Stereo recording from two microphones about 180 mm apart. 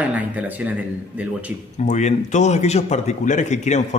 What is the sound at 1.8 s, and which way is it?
Speech, 40° left (ahead or behind).